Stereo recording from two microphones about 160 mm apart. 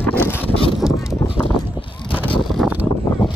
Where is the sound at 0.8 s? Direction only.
5° right (ahead or behind).